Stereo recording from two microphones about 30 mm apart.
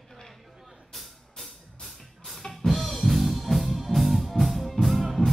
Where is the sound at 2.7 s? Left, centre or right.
Centre.